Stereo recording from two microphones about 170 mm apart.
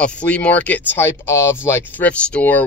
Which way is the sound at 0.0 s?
5° left (ahead or behind).